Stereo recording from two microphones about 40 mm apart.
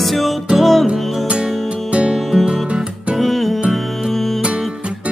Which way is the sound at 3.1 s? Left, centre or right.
Centre.